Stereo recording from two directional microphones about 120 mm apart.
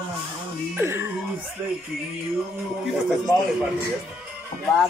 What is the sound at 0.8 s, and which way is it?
Speech, 20° right (ahead or behind).